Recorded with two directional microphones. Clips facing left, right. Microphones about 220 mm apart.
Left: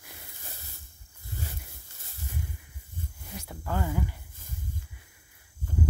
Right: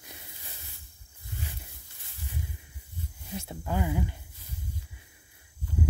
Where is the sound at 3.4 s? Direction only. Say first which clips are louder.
Right 1 dB; 20° right (ahead or behind).